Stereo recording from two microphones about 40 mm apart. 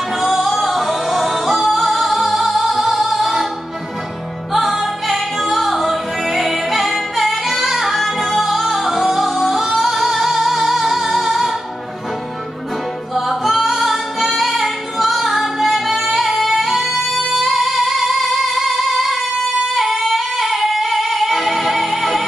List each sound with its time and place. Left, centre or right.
0.1 s music: centre
2.3 s music: right
3.0 s music: centre
4.5 s music: centre
13.1 s music: centre